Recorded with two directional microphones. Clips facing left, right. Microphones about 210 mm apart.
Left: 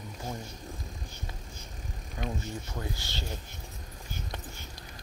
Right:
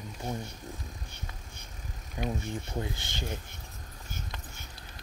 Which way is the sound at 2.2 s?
15° right (ahead or behind).